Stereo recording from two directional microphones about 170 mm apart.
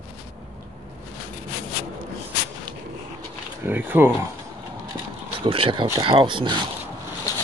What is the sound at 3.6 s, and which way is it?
Speech, 10° right (ahead or behind).